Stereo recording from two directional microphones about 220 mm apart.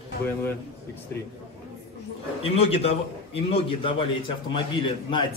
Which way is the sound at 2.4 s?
25° left (ahead or behind).